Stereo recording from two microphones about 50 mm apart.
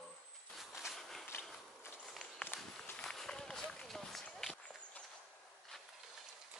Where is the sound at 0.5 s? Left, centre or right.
Centre.